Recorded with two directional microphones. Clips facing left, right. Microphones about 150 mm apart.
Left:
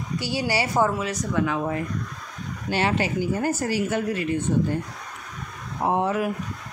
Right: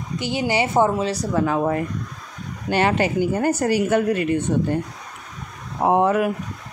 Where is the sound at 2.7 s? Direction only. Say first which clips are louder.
Right 4 dB; 55° right (ahead or behind).